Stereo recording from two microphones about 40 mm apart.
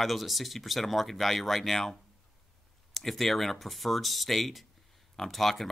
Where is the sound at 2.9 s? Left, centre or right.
Centre.